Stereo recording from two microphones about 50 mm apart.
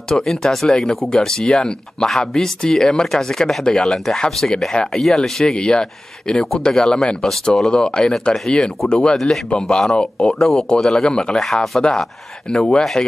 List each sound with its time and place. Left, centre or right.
0.1 s speech: centre
10.2 s speech: centre
11.3 s speech: centre
11.8 s speech: centre